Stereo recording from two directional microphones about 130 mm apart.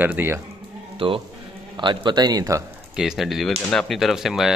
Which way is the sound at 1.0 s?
40° right (ahead or behind).